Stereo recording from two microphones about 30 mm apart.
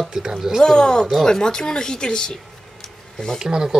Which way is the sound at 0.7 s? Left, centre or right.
Left.